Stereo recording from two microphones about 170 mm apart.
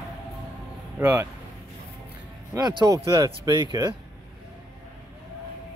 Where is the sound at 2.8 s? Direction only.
20° right (ahead or behind).